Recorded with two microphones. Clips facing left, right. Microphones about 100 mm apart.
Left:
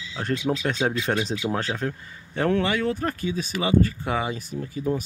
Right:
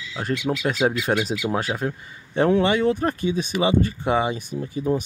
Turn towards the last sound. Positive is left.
turn(degrees=-20)  # may be behind; listen again after turning